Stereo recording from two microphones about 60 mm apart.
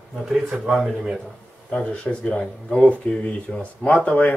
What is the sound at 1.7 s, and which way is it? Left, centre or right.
Speech, centre.